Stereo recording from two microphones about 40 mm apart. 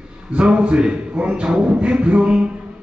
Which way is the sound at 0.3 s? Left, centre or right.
Right.